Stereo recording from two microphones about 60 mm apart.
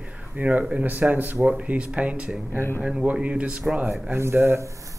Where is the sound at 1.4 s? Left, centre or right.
Centre.